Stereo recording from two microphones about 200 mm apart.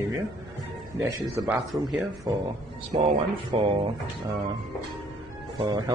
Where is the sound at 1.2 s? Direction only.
5° right (ahead or behind).